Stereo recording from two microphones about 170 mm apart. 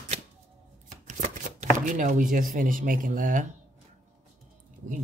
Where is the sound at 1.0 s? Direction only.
45° right (ahead or behind).